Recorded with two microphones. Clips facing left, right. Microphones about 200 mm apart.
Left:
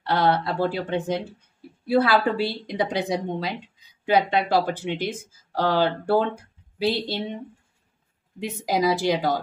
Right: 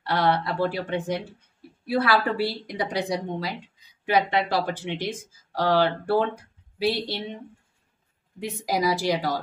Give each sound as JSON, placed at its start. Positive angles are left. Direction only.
{"t": 0.0, "sound": "speech", "side_deg": 25}
{"t": 8.4, "sound": "speech", "side_deg": 25}